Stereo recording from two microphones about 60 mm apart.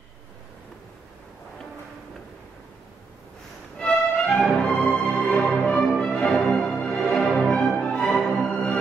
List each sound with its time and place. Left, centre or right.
3.7 s music: centre